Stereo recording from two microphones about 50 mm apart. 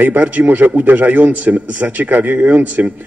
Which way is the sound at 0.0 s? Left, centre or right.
Right.